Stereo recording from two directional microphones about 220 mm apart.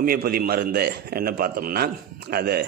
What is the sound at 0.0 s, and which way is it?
A man's voice, 40° right (ahead or behind).